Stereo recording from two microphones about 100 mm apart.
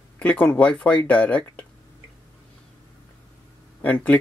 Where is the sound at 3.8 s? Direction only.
15° left (ahead or behind).